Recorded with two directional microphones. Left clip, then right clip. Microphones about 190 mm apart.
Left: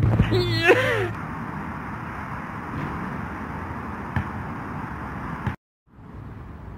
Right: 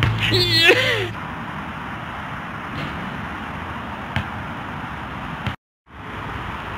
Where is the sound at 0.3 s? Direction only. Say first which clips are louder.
Right 4 dB; 10° right (ahead or behind).